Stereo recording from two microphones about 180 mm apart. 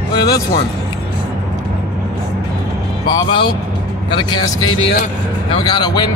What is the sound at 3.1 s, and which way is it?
Speech, 25° left (ahead or behind).